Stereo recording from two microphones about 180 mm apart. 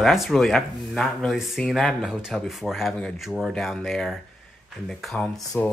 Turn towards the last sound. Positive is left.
turn(degrees=20)  # may be behind; listen again after turning